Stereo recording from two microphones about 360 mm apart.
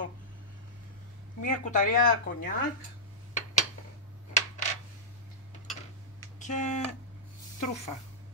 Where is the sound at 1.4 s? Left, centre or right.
Left.